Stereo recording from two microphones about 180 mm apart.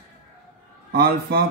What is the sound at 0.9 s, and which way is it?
Speech, 60° right (ahead or behind).